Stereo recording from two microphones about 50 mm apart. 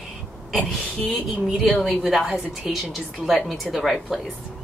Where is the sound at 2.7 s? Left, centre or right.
Centre.